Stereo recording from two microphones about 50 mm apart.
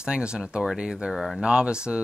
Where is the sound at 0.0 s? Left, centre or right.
Centre.